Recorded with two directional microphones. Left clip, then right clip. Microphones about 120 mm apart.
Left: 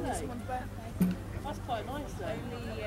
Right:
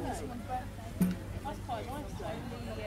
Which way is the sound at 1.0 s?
Centre (ahead or behind).